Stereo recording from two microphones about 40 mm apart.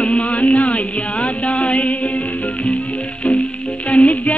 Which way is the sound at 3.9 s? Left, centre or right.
Left.